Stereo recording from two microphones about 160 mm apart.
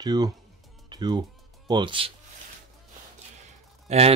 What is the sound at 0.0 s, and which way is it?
Speech, 25° right (ahead or behind).